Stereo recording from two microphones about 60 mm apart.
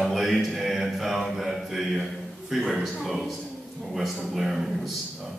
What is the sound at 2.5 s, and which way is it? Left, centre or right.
A man's voice, centre.